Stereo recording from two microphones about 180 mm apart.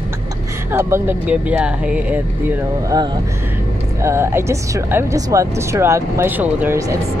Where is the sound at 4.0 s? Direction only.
15° right (ahead or behind).